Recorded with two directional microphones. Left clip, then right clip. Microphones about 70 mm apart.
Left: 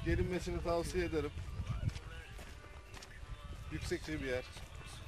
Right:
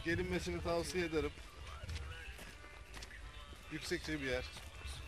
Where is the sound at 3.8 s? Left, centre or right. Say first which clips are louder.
Even; centre.